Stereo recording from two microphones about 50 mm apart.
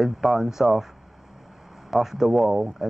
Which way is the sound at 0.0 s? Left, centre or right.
Centre.